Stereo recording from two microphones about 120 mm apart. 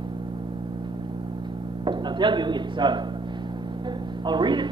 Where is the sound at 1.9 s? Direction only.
40° right (ahead or behind).